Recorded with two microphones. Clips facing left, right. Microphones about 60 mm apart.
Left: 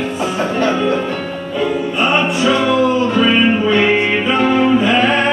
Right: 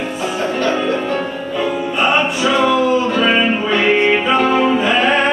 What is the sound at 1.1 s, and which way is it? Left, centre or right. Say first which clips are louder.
Music: right 1 dB; centre.